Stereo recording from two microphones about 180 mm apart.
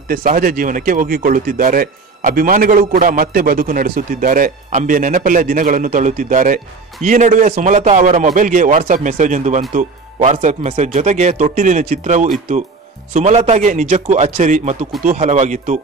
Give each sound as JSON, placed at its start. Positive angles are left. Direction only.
{"t": 0.1, "sound": "speech", "side_deg": -50}